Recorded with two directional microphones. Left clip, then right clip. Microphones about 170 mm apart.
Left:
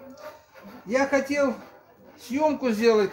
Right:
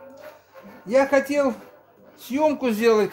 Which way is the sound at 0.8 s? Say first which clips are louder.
Right 5 dB; 55° right (ahead or behind).